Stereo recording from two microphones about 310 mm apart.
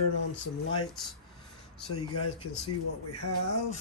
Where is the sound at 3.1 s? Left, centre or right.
Left.